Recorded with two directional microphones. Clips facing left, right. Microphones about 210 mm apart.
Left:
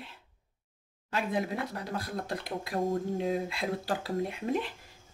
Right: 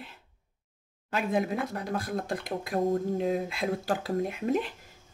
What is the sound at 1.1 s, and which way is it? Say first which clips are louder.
Speech: right 3 dB; 50° right (ahead or behind).